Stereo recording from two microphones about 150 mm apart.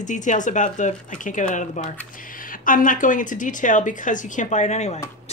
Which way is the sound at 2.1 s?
65° left (ahead or behind).